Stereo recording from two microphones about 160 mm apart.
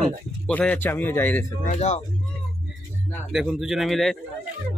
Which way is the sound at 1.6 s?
45° left (ahead or behind).